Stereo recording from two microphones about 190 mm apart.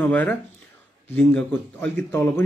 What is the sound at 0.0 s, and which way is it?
A man's voice, 10° left (ahead or behind).